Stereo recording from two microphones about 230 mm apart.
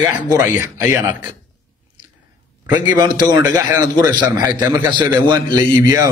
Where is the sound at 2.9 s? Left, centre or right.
Centre.